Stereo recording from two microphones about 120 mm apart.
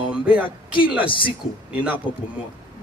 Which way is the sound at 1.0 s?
45° left (ahead or behind).